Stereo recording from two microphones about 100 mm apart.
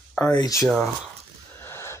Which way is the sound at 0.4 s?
35° left (ahead or behind).